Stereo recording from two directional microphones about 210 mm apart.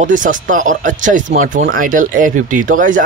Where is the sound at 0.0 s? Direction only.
40° right (ahead or behind).